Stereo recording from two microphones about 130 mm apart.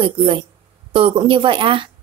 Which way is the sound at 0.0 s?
40° right (ahead or behind).